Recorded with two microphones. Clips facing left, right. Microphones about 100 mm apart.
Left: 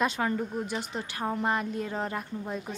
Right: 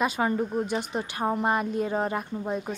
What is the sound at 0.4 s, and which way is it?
A woman's voice, 25° right (ahead or behind).